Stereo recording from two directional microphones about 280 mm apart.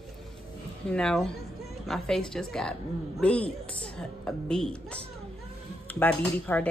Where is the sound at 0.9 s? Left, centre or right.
Centre.